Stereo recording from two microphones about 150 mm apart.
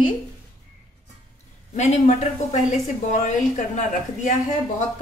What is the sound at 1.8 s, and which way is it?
A woman's voice, 45° left (ahead or behind).